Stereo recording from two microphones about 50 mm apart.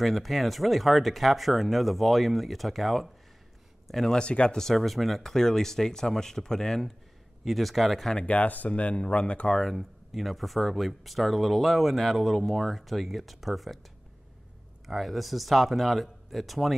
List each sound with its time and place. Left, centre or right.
0.0 s speech: centre
3.8 s a sound: centre
4.1 s speech: left
4.6 s speech: centre
8.3 s speech: left
9.6 s speech: centre
14.9 s speech: centre